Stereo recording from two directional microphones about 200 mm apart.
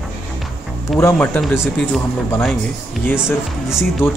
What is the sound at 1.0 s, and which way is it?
Speech, 10° left (ahead or behind).